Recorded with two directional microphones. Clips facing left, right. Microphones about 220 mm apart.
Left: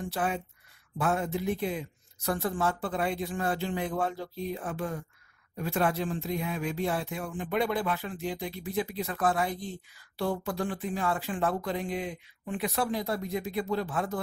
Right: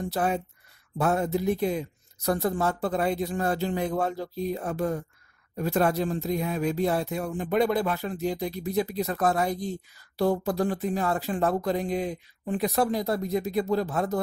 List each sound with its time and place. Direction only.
0.0 s speech: 40° right (ahead or behind)